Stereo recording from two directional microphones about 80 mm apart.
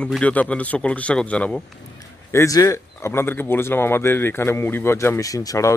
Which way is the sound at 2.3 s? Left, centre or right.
Left.